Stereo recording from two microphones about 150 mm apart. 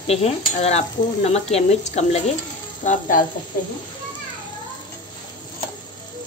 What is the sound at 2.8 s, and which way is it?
Speech, 60° left (ahead or behind).